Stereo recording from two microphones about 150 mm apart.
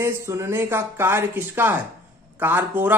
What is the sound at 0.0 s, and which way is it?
Speech, 20° right (ahead or behind).